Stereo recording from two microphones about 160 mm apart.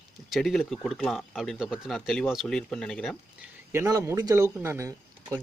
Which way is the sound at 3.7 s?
15° right (ahead or behind).